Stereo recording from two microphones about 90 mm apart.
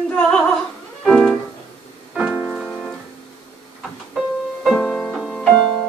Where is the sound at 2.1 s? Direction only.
15° right (ahead or behind).